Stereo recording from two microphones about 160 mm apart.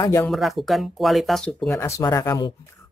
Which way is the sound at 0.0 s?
20° left (ahead or behind).